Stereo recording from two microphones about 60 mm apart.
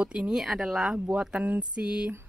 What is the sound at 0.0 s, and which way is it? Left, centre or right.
Speech, centre.